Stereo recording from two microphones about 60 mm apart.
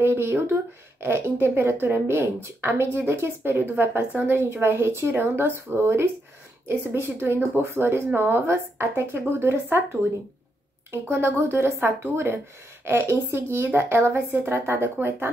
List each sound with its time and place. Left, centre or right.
0.0 s a woman's voice: right
10.9 s a woman's voice: right